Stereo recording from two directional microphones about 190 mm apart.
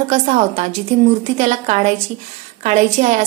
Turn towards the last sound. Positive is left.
turn(degrees=-35)  # may be behind; listen again after turning